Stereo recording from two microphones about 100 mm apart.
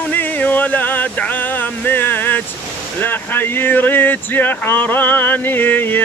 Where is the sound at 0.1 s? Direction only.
15° left (ahead or behind).